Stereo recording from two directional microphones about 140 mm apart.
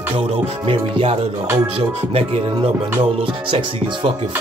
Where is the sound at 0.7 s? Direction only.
40° right (ahead or behind).